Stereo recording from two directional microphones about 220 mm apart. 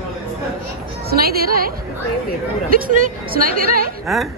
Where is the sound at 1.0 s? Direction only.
45° right (ahead or behind).